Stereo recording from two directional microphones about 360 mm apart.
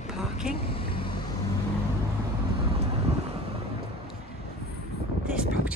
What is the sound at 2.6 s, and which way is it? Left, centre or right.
Vehicle, centre.